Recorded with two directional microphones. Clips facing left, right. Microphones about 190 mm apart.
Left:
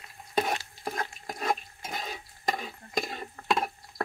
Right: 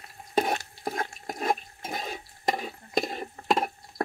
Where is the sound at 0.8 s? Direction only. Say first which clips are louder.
Right 2 dB; 25° right (ahead or behind).